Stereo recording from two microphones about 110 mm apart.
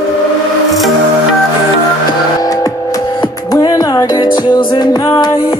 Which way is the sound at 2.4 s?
35° left (ahead or behind).